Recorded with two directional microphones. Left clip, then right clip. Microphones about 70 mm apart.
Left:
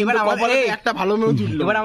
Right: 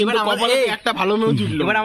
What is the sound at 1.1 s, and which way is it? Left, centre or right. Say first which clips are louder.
Speech: left 1 dB; centre.